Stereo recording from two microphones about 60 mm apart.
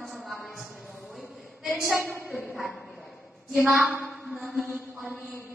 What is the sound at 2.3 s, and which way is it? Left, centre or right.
Bow-wow, centre.